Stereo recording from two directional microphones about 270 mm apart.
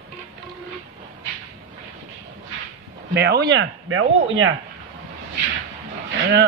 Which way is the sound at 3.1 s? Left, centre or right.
Right.